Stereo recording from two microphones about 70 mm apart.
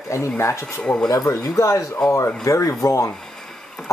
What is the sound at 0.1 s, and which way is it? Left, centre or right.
Speech, left.